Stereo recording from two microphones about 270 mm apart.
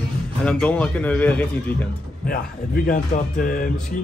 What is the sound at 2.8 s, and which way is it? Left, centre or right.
Music, left.